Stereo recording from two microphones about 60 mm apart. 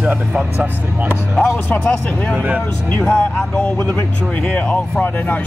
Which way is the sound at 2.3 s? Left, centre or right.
Right.